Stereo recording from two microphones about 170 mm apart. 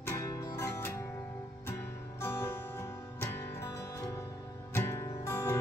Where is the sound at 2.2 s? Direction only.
15° left (ahead or behind).